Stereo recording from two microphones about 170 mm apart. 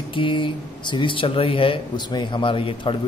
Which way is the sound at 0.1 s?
30° left (ahead or behind).